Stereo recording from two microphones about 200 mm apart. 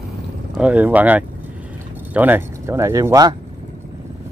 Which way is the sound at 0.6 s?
5° right (ahead or behind).